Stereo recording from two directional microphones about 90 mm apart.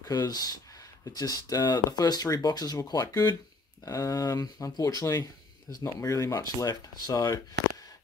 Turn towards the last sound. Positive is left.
turn(degrees=45)  # may be behind; listen again after turning